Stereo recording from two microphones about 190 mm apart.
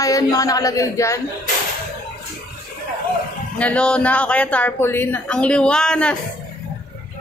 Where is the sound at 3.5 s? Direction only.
5° left (ahead or behind).